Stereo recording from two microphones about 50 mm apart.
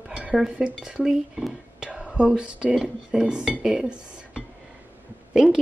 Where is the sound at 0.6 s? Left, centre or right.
Centre.